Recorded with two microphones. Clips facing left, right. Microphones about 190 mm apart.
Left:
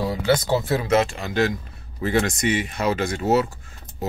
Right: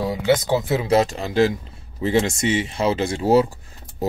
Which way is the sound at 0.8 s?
35° right (ahead or behind).